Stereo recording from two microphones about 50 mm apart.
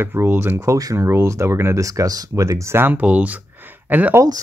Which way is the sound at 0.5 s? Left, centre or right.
Right.